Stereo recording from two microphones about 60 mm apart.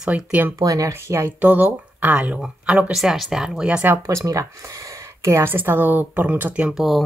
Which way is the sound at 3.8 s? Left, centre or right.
Right.